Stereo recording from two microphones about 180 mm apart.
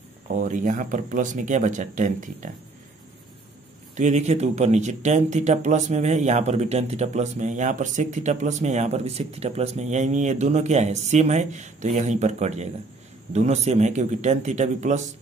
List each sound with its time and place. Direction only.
0.3 s speech: 45° right (ahead or behind)
3.9 s speech: 40° right (ahead or behind)